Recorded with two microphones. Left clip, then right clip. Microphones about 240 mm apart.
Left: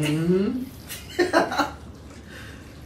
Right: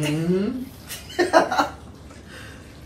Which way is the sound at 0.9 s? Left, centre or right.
Centre.